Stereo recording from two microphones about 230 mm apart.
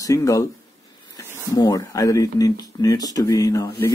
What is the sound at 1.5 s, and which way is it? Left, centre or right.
Speech, centre.